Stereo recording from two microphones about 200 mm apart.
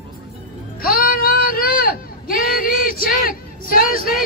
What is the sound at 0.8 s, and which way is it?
Speech, 45° left (ahead or behind).